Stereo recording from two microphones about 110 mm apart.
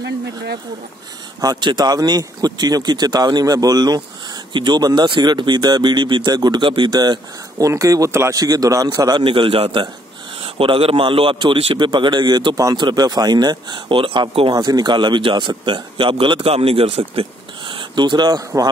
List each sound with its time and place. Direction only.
1.4 s speech: 40° right (ahead or behind)
9.2 s a man's voice: 50° right (ahead or behind)
14.5 s speech: 40° right (ahead or behind)